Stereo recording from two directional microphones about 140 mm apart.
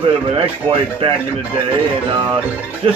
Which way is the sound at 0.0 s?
40° right (ahead or behind).